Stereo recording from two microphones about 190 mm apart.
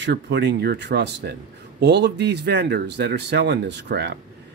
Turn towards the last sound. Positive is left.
turn(degrees=-65)  # may be behind; listen again after turning